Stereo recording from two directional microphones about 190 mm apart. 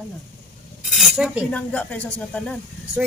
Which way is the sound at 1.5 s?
5° left (ahead or behind).